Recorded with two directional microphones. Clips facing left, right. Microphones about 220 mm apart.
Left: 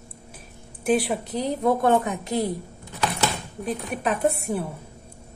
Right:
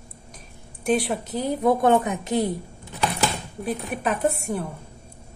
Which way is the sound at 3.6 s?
5° right (ahead or behind).